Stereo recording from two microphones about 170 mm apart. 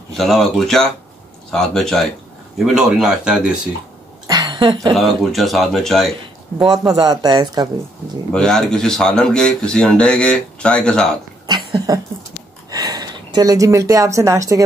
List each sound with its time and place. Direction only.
0.2 s speech: centre (ahead or behind)
4.3 s a sound: 25° right (ahead or behind)
4.9 s speech: centre (ahead or behind)
6.6 s speech: 25° right (ahead or behind)
8.3 s speech: 5° left (ahead or behind)
11.4 s a sound: 25° right (ahead or behind)
12.7 s speech: 25° right (ahead or behind)